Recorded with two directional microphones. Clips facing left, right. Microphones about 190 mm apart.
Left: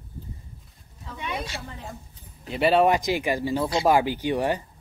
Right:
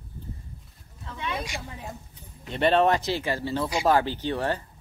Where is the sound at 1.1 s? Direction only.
15° left (ahead or behind).